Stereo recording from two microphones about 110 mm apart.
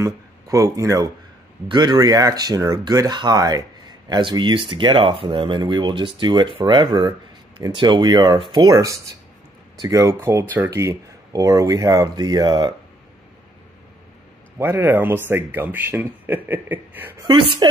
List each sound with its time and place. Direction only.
0.0 s speech: 30° right (ahead or behind)
1.7 s speech: 40° right (ahead or behind)
10.5 s speech: 20° right (ahead or behind); by 12.7 s 40° right (ahead or behind)
14.6 s speech: 20° right (ahead or behind)
17.2 s speech: 45° right (ahead or behind)